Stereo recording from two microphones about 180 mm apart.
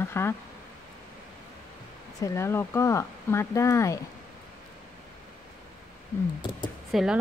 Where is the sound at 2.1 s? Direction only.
15° left (ahead or behind).